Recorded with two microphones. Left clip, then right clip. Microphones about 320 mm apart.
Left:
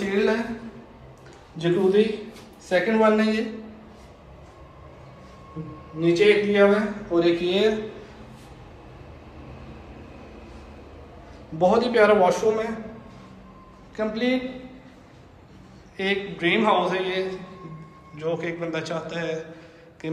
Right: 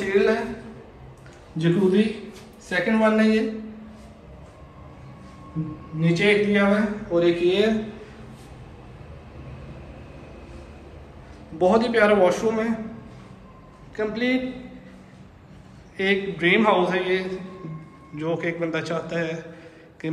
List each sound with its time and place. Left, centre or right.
0.1 s a woman's voice: centre
1.6 s a man's voice: centre
5.9 s speech: centre
11.5 s speech: centre
13.9 s speech: centre
16.0 s speech: centre